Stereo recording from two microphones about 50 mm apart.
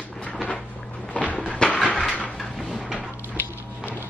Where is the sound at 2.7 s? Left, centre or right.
Centre.